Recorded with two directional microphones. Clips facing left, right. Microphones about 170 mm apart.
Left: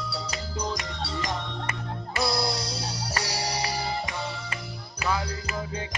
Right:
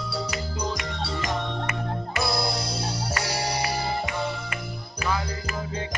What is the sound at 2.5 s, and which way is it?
Music, 50° right (ahead or behind).